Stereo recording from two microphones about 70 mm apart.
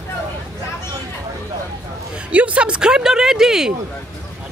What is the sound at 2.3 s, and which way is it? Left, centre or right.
Speech, centre.